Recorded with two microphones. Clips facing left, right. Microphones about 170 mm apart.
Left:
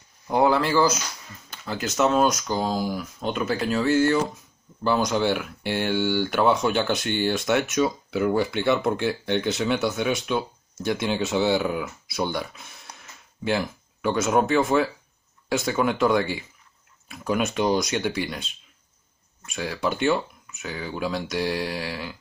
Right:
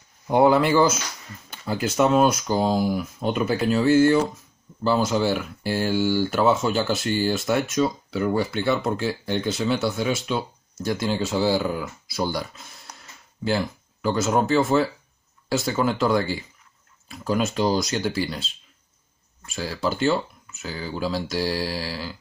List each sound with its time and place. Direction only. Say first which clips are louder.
0.5 s speech: right 2 dB; 20° right (ahead or behind); by 18.4 s centre (ahead or behind)
19.5 s speech: even; centre (ahead or behind)